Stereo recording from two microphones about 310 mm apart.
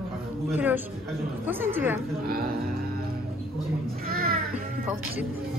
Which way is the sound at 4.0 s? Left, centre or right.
Right.